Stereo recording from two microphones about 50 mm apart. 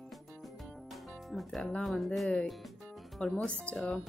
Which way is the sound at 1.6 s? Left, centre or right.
Left.